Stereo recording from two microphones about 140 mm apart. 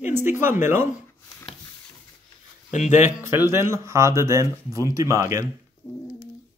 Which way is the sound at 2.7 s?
60° left (ahead or behind).